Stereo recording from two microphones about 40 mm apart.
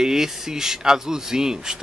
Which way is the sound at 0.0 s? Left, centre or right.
Centre.